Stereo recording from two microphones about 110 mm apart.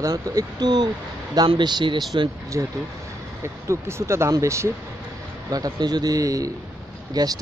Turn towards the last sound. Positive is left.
turn(degrees=-35)  # may be behind; listen again after turning